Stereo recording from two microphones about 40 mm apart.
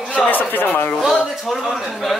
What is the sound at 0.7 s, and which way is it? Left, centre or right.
Speech, left.